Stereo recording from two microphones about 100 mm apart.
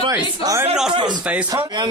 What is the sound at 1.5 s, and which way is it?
Speech, 45° right (ahead or behind).